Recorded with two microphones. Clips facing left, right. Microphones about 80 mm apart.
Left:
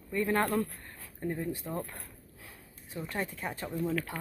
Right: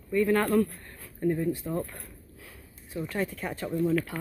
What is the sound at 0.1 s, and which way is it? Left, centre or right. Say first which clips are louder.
Speech: right 5 dB; left.